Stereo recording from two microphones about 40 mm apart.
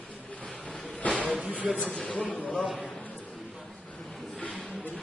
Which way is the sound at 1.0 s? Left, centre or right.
Left.